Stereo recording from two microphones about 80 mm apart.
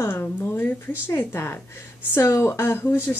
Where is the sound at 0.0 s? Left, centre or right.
Left.